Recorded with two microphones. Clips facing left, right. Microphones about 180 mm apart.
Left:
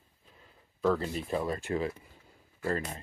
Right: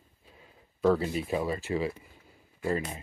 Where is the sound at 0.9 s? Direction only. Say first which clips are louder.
Right 3 dB; 5° right (ahead or behind).